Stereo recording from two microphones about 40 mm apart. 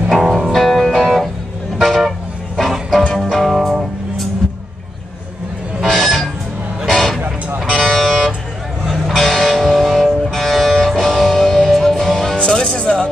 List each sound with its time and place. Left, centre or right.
0.1 s music: centre
1.8 s vehicle: centre
3.2 s music: centre
4.4 s a sound: centre
5.9 s music: centre
6.9 s vehicle: centre
7.6 s music: centre
12.4 s music: left